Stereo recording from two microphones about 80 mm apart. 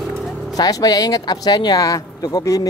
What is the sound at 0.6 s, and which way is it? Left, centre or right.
Speech, left.